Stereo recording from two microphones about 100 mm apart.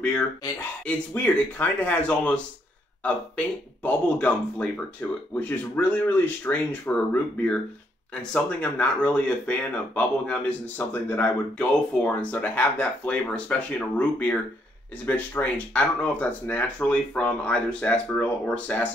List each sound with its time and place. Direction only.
0.0 s speech: 15° left (ahead or behind)